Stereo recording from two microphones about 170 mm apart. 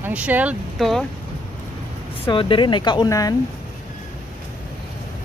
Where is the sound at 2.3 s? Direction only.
30° left (ahead or behind).